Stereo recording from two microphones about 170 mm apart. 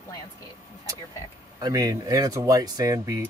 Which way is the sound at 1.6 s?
20° right (ahead or behind).